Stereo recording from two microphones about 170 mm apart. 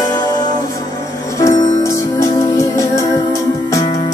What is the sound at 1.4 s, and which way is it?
Music, 20° left (ahead or behind).